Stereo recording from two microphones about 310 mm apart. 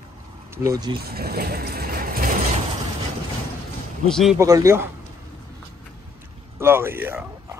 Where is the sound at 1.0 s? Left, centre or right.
Right.